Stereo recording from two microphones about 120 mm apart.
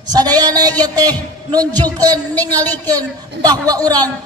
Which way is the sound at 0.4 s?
30° right (ahead or behind).